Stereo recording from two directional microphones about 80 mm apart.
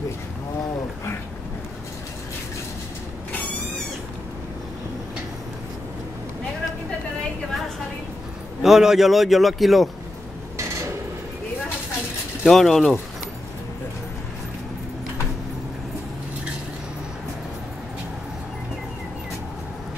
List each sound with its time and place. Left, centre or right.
8.6 s speech: centre
12.4 s speech: centre